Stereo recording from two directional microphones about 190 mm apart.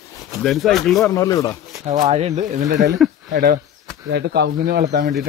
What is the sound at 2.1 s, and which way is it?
Speech, 35° right (ahead or behind).